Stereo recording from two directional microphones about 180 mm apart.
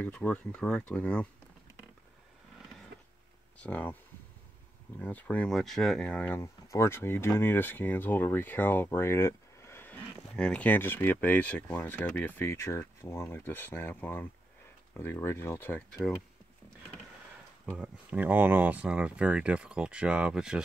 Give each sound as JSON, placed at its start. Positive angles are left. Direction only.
{"t": 0.0, "sound": "speech", "side_deg": 5}
{"t": 2.9, "sound": "a sound", "side_deg": -60}
{"t": 3.5, "sound": "speech", "side_deg": 10}
{"t": 4.9, "sound": "speech", "side_deg": 10}
{"t": 17.6, "sound": "speech", "side_deg": -10}